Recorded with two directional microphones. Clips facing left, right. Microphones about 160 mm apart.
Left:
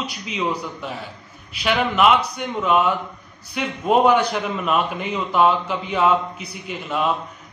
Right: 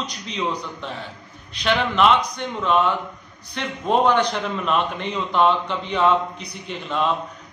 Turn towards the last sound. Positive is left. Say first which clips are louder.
# even
turn(degrees=10)  # may be behind; listen again after turning